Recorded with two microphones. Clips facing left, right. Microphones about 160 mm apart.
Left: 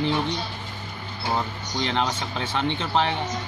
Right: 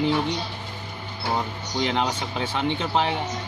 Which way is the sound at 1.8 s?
10° right (ahead or behind).